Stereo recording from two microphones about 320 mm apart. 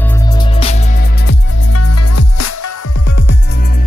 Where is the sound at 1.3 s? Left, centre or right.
Left.